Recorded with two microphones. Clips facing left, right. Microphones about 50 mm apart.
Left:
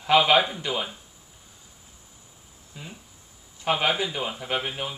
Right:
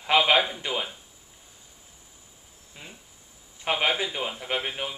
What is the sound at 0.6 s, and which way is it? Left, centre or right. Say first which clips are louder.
Speech: left 1 dB; centre.